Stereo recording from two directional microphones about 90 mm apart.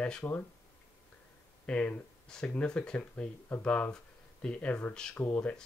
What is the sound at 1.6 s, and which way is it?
Speech, 15° left (ahead or behind).